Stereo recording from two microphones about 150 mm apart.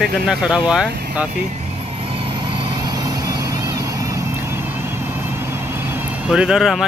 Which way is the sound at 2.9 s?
25° right (ahead or behind).